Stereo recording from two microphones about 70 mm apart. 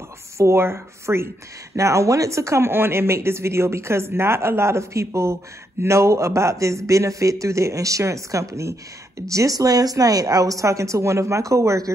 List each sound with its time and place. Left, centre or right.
0.4 s speech: right